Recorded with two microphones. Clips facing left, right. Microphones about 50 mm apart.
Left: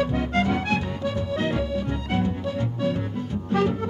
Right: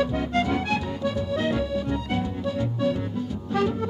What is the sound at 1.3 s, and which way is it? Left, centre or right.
Music, left.